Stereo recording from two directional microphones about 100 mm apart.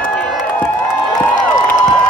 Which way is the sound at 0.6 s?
Centre (ahead or behind).